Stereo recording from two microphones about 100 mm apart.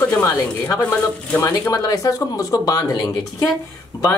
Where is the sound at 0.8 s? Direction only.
15° left (ahead or behind).